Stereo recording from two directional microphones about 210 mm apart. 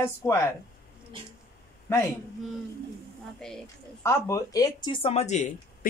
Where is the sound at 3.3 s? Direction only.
Centre (ahead or behind).